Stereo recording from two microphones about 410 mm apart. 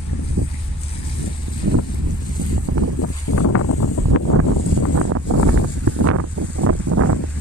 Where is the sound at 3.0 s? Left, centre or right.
Left.